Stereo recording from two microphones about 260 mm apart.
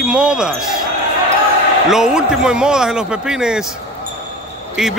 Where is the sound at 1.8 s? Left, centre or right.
Centre.